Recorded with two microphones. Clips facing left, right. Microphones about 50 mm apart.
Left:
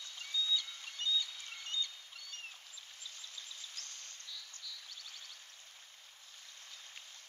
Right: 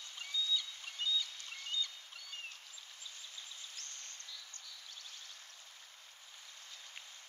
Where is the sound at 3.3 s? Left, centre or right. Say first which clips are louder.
Left 1 dB; right.